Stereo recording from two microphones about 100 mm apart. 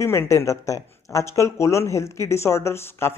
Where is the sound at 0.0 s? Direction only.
25° left (ahead or behind).